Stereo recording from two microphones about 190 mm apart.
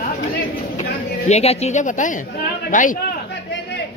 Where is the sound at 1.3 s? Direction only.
35° left (ahead or behind).